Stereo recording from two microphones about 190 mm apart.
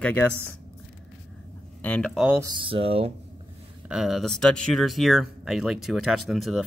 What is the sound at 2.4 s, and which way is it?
Speech, 30° right (ahead or behind).